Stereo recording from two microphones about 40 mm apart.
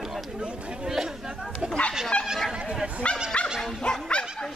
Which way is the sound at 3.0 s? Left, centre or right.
Left.